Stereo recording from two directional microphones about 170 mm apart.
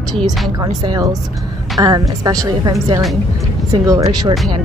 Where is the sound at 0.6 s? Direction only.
20° right (ahead or behind).